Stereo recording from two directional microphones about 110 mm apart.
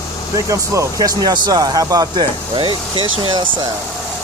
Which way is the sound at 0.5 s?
35° right (ahead or behind).